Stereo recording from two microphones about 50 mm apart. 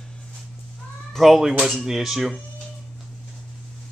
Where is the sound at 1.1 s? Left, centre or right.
Centre.